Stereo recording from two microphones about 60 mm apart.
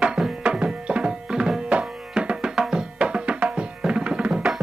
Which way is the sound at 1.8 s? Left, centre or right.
Centre.